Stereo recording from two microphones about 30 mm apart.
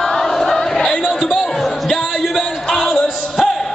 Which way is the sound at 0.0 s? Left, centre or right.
Centre.